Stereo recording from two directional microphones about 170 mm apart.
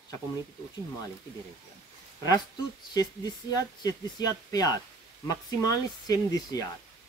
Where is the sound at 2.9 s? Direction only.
20° left (ahead or behind).